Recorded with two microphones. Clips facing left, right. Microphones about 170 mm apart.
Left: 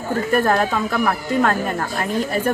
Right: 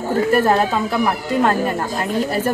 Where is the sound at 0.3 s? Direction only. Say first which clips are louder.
Right 1 dB; 5° right (ahead or behind).